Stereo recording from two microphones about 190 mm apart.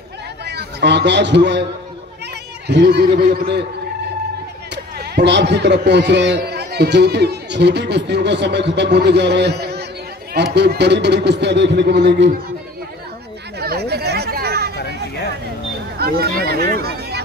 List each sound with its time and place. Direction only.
0.5 s a man's voice: 60° right (ahead or behind)
2.7 s a man's voice: 65° right (ahead or behind)
4.9 s a man's voice: 60° right (ahead or behind)
13.6 s a sound: 55° right (ahead or behind)
14.8 s hubbub: 60° left (ahead or behind)
16.0 s speech: 55° right (ahead or behind)